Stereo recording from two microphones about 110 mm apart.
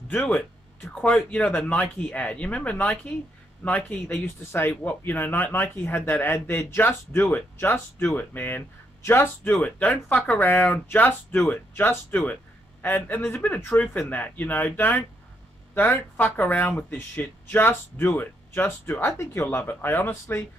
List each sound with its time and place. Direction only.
0.1 s speech: 15° left (ahead or behind)